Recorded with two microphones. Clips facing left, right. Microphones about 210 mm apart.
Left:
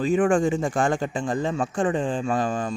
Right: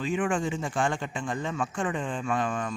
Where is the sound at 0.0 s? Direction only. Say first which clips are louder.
Left 8 dB; 40° left (ahead or behind).